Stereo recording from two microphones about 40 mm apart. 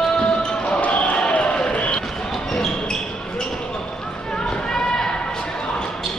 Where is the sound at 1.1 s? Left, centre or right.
Left.